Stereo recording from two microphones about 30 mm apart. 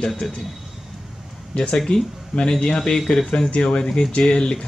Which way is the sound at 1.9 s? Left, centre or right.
Left.